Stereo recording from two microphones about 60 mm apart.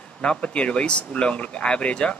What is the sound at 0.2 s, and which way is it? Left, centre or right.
Speech, centre.